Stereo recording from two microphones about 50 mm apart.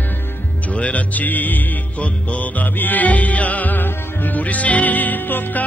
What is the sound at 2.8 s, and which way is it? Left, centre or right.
Music, left.